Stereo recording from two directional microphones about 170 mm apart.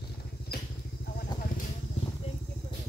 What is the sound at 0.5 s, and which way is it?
Vehicle, 65° left (ahead or behind).